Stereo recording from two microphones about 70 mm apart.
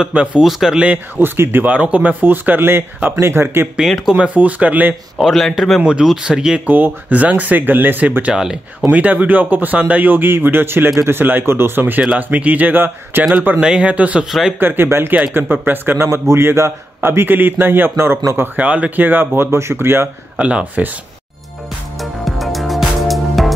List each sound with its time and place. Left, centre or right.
0.0 s speech: centre
0.4 s speech: centre
0.7 s speech: right
4.0 s speech: centre
5.1 s speech: centre
6.0 s speech: centre
6.6 s speech: right
8.3 s speech: centre
8.9 s speech: right
13.6 s speech: centre
14.6 s a man's voice: right
18.6 s a man's voice: right
20.3 s speech: centre
22.2 s music: centre